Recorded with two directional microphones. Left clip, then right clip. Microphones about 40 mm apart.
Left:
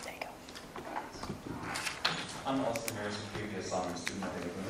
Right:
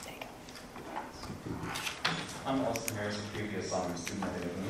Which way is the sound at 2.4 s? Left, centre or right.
Centre.